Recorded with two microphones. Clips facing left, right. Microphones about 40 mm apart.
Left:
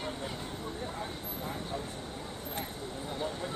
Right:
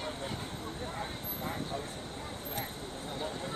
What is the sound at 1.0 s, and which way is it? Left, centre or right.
Vehicle, centre.